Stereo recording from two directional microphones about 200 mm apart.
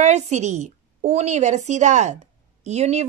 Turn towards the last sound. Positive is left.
turn(degrees=-35)  # may be behind; listen again after turning